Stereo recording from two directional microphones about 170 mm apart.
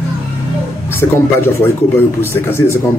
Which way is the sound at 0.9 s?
15° left (ahead or behind).